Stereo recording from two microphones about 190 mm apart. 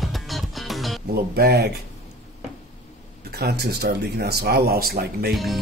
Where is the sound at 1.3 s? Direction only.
55° right (ahead or behind).